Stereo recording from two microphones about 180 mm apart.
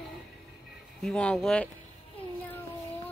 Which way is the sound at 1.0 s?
5° left (ahead or behind).